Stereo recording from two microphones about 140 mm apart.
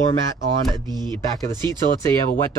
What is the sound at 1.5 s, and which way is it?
Speech, 30° right (ahead or behind).